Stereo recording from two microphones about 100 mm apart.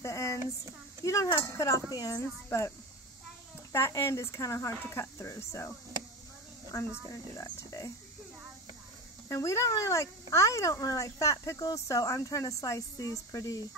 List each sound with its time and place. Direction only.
0.0 s a sound: 30° left (ahead or behind)
1.0 s speech: 30° left (ahead or behind)
3.7 s speech: 25° left (ahead or behind)
9.3 s speech: 30° left (ahead or behind)